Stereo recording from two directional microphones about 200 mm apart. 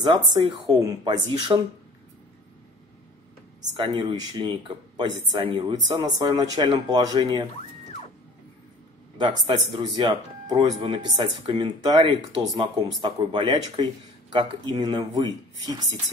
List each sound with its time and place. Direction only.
0.0 s speech: 25° right (ahead or behind)
3.7 s speech: 25° right (ahead or behind)
9.2 s speech: 25° right (ahead or behind)